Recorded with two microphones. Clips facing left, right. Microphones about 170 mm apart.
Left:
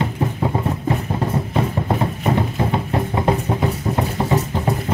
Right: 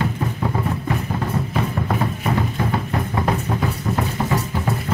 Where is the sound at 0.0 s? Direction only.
25° left (ahead or behind).